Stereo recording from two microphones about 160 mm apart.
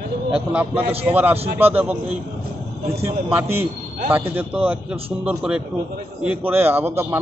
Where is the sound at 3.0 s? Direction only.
10° right (ahead or behind).